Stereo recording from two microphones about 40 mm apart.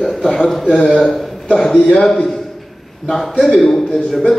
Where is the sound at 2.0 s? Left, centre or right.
Centre.